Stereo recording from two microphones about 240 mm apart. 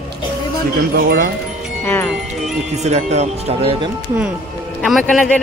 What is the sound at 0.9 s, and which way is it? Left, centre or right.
Speech, right.